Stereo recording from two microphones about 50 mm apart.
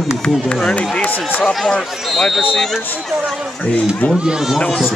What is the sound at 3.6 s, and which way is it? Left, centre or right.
Speech, left.